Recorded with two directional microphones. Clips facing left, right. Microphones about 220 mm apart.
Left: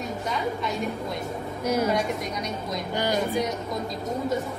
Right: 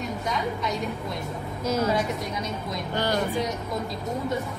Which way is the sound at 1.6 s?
10° left (ahead or behind).